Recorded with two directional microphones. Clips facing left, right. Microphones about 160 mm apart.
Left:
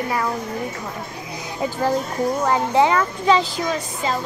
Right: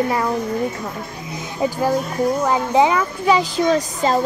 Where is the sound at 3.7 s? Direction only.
40° right (ahead or behind).